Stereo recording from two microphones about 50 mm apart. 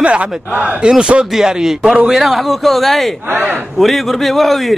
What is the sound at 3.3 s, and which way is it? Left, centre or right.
Speech, right.